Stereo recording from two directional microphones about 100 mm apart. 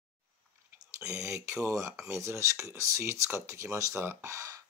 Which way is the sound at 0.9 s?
30° right (ahead or behind).